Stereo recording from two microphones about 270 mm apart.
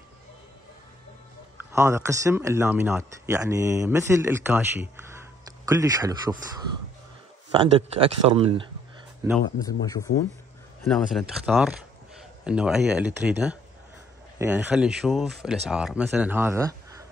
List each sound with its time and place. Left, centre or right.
1.6 s speech: centre
7.5 s speech: centre
9.6 s speech: centre
10.8 s speech: centre